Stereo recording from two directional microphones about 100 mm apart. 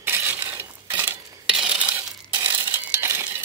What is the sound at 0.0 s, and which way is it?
Mechanisms, 20° right (ahead or behind).